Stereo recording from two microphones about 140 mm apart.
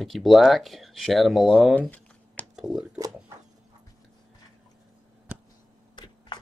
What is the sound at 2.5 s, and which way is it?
Speech, 5° right (ahead or behind).